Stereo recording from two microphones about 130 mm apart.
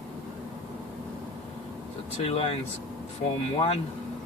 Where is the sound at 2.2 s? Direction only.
50° left (ahead or behind).